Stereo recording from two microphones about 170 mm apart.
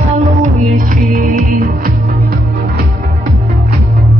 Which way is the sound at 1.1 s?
55° right (ahead or behind).